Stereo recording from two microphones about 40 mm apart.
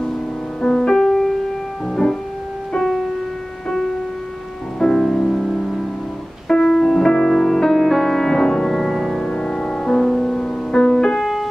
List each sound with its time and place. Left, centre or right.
0.6 s music: left
0.8 s music: centre
2.7 s music: centre
4.7 s music: centre
9.2 s music: centre